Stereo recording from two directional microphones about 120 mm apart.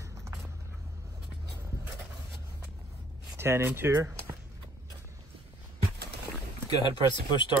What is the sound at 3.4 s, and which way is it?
Speech, 20° right (ahead or behind).